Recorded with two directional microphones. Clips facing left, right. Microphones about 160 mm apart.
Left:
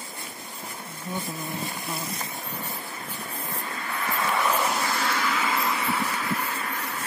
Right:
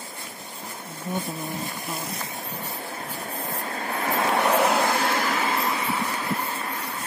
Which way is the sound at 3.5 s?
45° right (ahead or behind).